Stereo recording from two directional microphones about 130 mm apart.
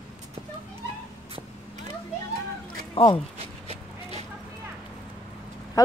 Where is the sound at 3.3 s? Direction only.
50° right (ahead or behind).